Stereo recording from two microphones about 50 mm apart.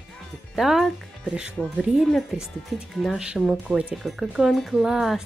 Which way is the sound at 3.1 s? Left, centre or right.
Centre.